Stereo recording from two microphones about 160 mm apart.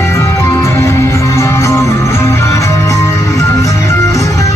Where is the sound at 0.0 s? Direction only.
15° left (ahead or behind).